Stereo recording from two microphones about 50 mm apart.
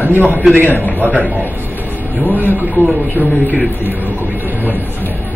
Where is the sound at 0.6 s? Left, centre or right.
Left.